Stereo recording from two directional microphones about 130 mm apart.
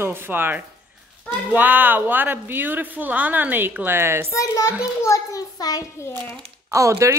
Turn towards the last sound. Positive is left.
turn(degrees=-25)  # may be behind; listen again after turning